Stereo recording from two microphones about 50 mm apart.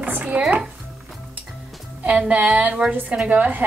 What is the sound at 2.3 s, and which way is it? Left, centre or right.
A woman's voice, right.